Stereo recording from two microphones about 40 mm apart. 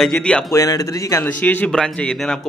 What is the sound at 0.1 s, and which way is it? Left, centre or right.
Speech, left.